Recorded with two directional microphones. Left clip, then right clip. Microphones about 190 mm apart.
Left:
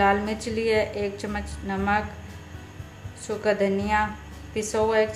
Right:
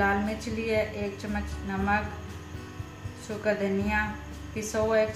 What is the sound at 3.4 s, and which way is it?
A woman's voice, 60° left (ahead or behind).